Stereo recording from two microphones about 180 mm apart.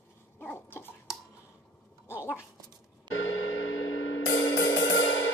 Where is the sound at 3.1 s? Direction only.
90° left.